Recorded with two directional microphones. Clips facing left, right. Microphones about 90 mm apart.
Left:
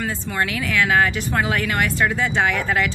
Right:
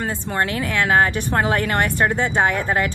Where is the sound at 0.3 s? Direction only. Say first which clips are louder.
Right 1 dB; 35° right (ahead or behind).